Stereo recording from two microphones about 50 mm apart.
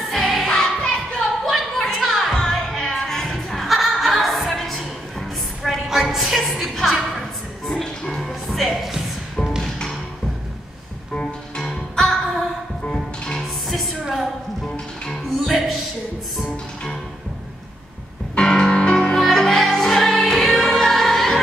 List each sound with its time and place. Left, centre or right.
0.1 s music: centre
0.8 s a sound: centre
1.5 s a sound: centre
2.7 s music: centre
5.9 s music: centre
11.1 s music: centre
13.7 s music: centre
15.4 s music: centre
18.3 s music: centre